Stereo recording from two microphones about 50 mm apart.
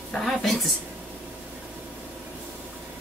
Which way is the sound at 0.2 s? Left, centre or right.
Centre.